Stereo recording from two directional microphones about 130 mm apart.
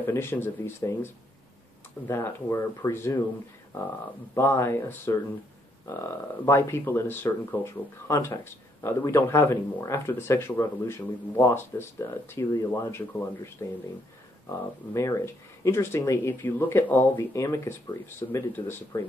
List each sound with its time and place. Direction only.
0.0 s speech: 20° left (ahead or behind)
4.4 s speech: 20° left (ahead or behind)
14.5 s speech: 20° left (ahead or behind)